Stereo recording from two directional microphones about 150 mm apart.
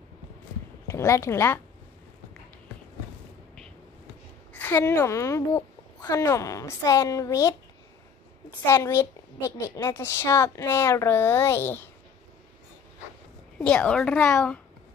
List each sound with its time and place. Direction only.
0.8 s a child's voice: 20° left (ahead or behind)
4.6 s a woman's voice: 15° left (ahead or behind)
8.6 s a woman's voice: 20° left (ahead or behind)
13.6 s a child's voice: 10° left (ahead or behind)